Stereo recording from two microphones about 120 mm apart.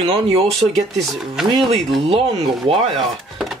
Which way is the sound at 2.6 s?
50° right (ahead or behind).